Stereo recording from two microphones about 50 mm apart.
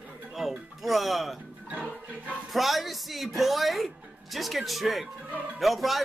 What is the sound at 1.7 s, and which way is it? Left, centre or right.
Music, right.